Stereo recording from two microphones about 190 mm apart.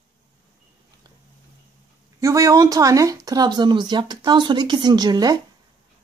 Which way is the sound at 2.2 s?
20° right (ahead or behind).